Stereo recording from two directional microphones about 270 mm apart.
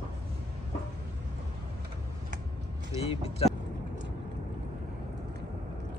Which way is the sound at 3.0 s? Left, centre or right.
Left.